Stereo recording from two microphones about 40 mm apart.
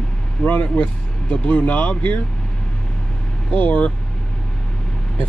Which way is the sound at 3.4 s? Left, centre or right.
Left.